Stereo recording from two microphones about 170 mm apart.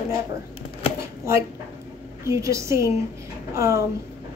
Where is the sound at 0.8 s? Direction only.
30° left (ahead or behind).